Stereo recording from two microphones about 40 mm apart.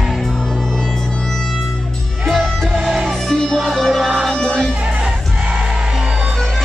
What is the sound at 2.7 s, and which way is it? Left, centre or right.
Music, centre.